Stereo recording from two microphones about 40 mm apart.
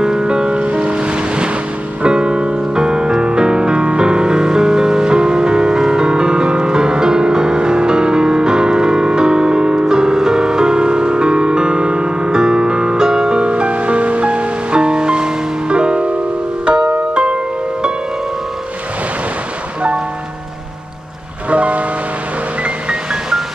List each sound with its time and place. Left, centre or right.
0.0 s music: centre
21.5 s music: right